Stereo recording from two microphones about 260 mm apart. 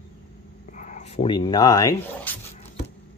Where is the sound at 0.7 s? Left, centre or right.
Left; by 2.4 s centre.